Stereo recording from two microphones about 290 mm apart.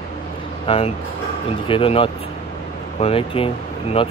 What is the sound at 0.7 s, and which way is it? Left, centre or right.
Speech, centre.